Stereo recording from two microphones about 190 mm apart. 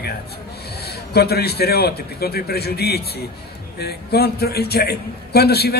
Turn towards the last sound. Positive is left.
turn(degrees=55)  # may be behind; listen again after turning